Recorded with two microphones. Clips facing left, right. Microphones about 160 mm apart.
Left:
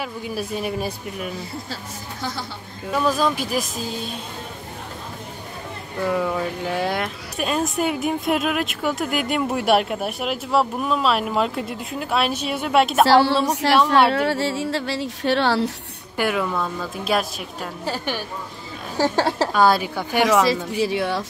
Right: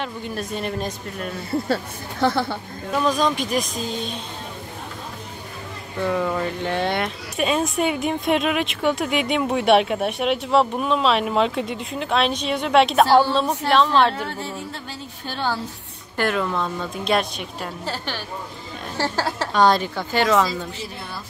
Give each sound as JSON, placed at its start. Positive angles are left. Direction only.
{"t": 0.0, "sound": "speech", "side_deg": 5}
{"t": 1.7, "sound": "speech", "side_deg": -60}
{"t": 2.9, "sound": "speech", "side_deg": 5}
{"t": 6.0, "sound": "speech", "side_deg": 0}
{"t": 13.0, "sound": "a woman's voice", "side_deg": 85}
{"t": 16.2, "sound": "speech", "side_deg": 10}
{"t": 19.2, "sound": "a woman's voice", "side_deg": 35}
{"t": 19.5, "sound": "speech", "side_deg": 5}
{"t": 20.8, "sound": "a woman's voice", "side_deg": 85}